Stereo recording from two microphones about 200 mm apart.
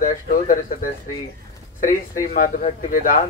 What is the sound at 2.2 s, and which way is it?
Speech, 45° left (ahead or behind).